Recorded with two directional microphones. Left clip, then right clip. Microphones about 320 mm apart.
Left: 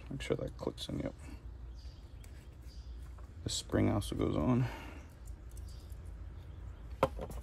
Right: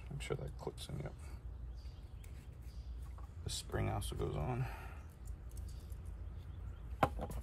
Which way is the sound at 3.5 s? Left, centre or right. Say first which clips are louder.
Left 8 dB; centre.